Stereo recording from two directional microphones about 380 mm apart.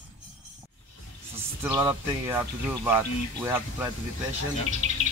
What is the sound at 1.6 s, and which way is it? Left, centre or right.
Speech, centre.